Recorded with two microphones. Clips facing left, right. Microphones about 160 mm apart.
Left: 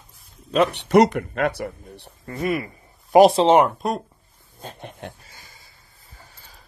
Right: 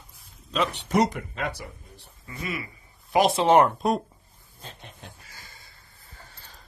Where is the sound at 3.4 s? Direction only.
15° left (ahead or behind).